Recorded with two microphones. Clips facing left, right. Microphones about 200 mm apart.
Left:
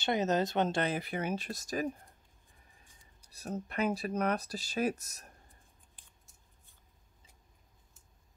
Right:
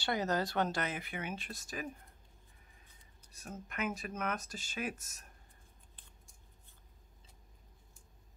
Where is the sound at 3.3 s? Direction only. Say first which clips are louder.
Left 8 dB; 35° left (ahead or behind).